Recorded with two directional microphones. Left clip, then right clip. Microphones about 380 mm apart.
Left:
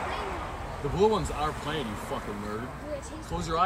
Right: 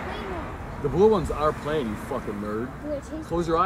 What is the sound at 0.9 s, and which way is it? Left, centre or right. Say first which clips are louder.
Speech: right 5 dB; centre.